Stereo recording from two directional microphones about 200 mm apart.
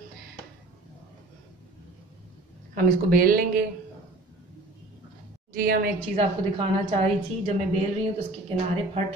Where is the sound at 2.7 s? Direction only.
45° right (ahead or behind).